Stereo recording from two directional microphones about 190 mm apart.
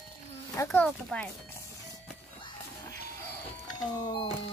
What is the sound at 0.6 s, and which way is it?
Speech, 15° left (ahead or behind).